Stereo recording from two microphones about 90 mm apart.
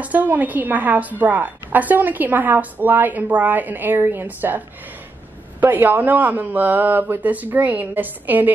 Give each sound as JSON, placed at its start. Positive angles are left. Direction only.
{"t": 0.0, "sound": "a woman's voice", "side_deg": -15}